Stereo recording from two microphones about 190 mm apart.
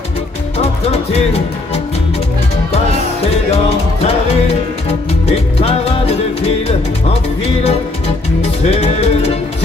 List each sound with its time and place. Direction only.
5.3 s music: 35° left (ahead or behind)
8.4 s music: 35° left (ahead or behind)